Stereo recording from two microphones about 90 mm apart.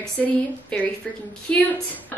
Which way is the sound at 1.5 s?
10° left (ahead or behind).